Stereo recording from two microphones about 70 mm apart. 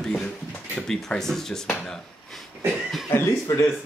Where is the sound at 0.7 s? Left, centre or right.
Centre.